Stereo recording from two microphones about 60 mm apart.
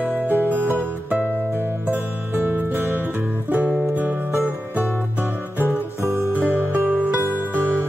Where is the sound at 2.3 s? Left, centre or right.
Right.